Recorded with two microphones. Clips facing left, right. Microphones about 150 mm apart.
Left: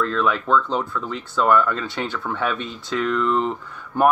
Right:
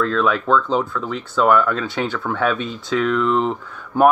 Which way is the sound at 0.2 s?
5° right (ahead or behind).